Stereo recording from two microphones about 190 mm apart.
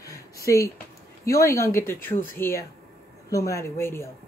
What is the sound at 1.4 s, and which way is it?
A woman's voice, 15° left (ahead or behind).